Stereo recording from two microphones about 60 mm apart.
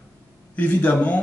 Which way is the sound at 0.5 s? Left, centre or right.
Left.